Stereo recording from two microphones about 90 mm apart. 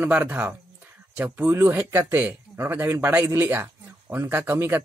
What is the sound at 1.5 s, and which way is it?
Speech, 30° right (ahead or behind).